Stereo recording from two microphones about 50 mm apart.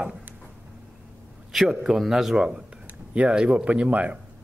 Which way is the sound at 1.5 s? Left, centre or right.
Centre.